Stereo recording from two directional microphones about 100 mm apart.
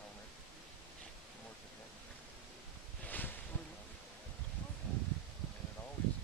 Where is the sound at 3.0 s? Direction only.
15° left (ahead or behind).